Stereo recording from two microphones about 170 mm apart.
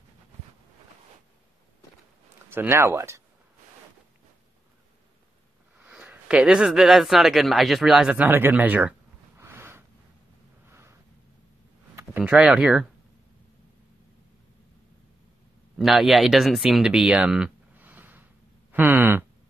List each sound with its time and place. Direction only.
2.5 s speech: 15° right (ahead or behind)
5.8 s speech: 10° right (ahead or behind)
9.4 s a sound: 15° right (ahead or behind)
12.2 s speech: 5° right (ahead or behind)
15.8 s speech: centre (ahead or behind)